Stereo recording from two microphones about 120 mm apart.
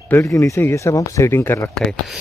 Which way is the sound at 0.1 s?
25° left (ahead or behind).